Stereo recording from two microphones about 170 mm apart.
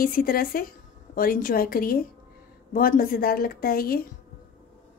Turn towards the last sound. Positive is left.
turn(degrees=60)  # may be behind; listen again after turning